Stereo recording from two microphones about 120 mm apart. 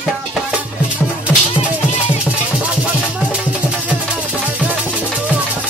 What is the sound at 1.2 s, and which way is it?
Music, 10° right (ahead or behind).